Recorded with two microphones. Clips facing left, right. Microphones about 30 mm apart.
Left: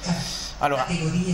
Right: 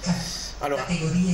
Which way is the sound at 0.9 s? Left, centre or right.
Centre.